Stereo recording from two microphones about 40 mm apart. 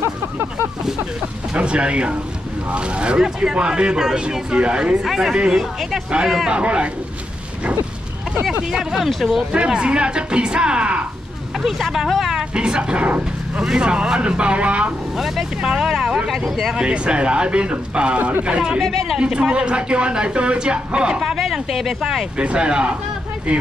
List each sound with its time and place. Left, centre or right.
1.5 s a man's voice: right
3.2 s a man's voice: centre
5.0 s speech: centre
6.5 s a man's voice: right
8.6 s speech: centre
9.7 s a man's voice: right
11.6 s speech: centre
12.4 s a man's voice: right
15.1 s speech: centre
16.3 s speech: centre
16.7 s a man's voice: right
18.8 s speech: centre
19.1 s a man's voice: right
22.4 s a man's voice: right